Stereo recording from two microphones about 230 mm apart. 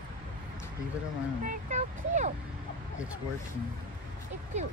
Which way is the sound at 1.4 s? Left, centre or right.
Right.